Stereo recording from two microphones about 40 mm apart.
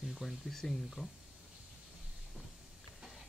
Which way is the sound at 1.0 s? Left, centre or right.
Right.